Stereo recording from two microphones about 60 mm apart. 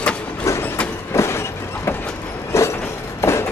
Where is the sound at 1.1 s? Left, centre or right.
Left.